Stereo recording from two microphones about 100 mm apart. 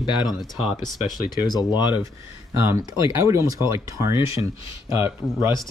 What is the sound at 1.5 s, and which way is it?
Speech, 45° left (ahead or behind).